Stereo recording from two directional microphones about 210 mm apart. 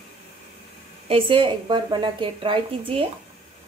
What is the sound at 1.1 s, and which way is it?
A woman's voice, 25° right (ahead or behind).